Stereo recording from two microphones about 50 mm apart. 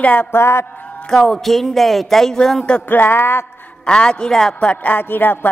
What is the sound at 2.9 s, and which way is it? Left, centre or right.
Speech, left.